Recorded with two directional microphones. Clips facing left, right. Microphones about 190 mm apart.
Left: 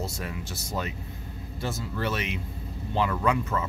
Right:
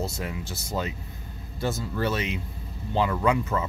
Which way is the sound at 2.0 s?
35° right (ahead or behind).